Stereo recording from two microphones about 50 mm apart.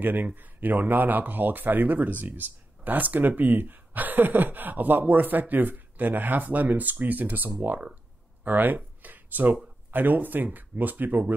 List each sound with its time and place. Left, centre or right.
0.0 s speech: right